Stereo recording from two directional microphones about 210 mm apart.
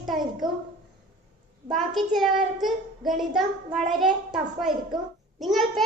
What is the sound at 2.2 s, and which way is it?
A child's voice, centre (ahead or behind).